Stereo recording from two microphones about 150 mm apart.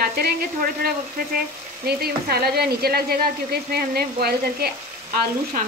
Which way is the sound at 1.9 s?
90° right.